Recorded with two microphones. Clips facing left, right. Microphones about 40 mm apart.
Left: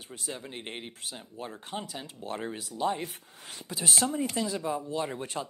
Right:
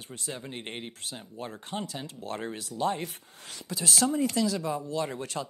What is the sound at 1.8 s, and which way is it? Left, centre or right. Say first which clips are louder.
Speech: right 2 dB; right.